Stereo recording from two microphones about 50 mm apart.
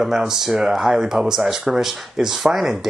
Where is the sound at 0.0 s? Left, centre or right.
Centre.